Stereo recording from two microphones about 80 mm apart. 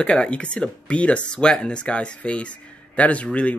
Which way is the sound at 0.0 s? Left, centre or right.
Centre.